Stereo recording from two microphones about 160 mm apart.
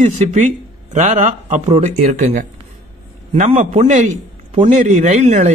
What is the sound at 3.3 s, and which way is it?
A man's voice, 45° right (ahead or behind).